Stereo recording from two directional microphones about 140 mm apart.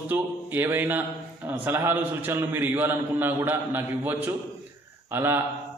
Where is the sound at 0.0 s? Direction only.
15° right (ahead or behind).